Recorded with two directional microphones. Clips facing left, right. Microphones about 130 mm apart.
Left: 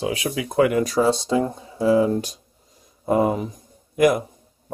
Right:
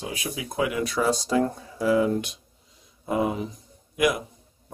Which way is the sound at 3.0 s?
45° left (ahead or behind).